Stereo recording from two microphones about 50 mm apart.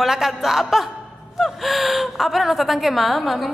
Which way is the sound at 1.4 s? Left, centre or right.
Centre.